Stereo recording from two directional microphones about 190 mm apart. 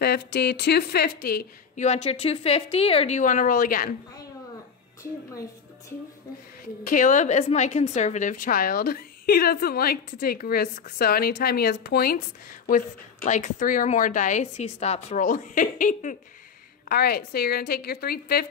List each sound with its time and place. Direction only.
0.0 s speech: 60° left (ahead or behind)
1.8 s a woman's voice: 35° left (ahead or behind)
6.8 s a woman's voice: 45° left (ahead or behind)
16.9 s a woman's voice: 55° left (ahead or behind)